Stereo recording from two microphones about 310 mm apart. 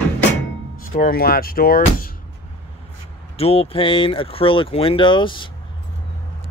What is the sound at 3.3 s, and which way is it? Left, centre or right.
Speech, centre.